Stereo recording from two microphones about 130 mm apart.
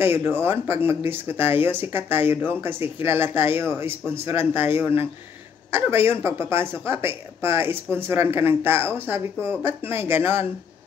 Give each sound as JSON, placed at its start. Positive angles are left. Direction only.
{"t": 0.0, "sound": "a woman's voice", "side_deg": -15}